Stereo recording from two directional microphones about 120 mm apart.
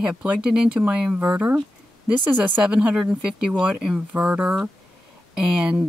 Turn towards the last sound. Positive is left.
turn(degrees=-5)  # may be behind; listen again after turning